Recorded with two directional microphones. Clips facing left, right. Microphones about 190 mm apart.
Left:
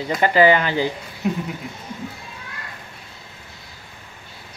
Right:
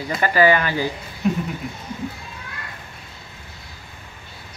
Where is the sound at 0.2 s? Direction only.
20° left (ahead or behind).